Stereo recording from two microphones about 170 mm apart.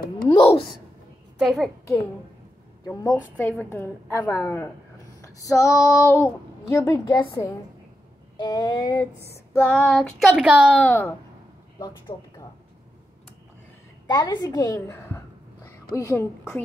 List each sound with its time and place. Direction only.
0.4 s a sound: 30° left (ahead or behind)
1.4 s child singing: centre (ahead or behind)
2.8 s a woman's voice: 20° left (ahead or behind)
3.1 s speech: 10° left (ahead or behind)
8.4 s child singing: 25° left (ahead or behind); by 10.8 s 5° right (ahead or behind)
10.8 s speech: 15° left (ahead or behind)
12.1 s a woman's voice: 30° left (ahead or behind)
14.0 s a woman's voice: 25° left (ahead or behind)